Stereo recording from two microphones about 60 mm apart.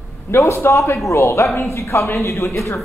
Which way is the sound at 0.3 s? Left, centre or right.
Left.